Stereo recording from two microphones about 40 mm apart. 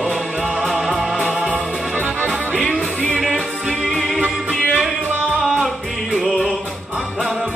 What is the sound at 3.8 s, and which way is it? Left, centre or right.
Music, centre.